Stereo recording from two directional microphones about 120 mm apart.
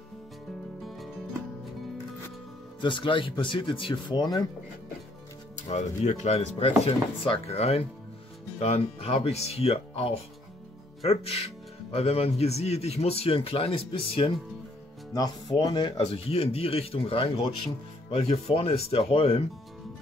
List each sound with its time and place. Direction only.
0.8 s music: centre (ahead or behind)
2.8 s speech: 40° left (ahead or behind)
5.6 s speech: 70° left (ahead or behind); by 14.4 s 50° left (ahead or behind)
15.1 s speech: 35° left (ahead or behind)
16.0 s speech: 55° left (ahead or behind)